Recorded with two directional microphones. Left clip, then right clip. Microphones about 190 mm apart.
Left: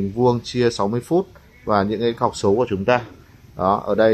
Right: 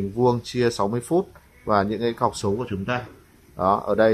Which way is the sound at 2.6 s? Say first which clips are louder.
Left 10 dB; 30° left (ahead or behind).